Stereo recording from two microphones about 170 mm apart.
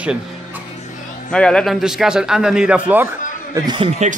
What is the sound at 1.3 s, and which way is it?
Speech, 5° left (ahead or behind).